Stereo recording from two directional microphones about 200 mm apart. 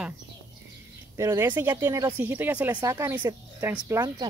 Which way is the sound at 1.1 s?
15° right (ahead or behind).